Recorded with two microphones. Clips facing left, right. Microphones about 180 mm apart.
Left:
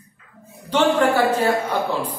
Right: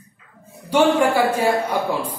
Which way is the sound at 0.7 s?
10° right (ahead or behind).